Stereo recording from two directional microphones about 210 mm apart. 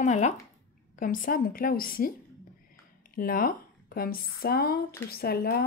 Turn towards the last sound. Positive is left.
turn(degrees=45)  # may be behind; listen again after turning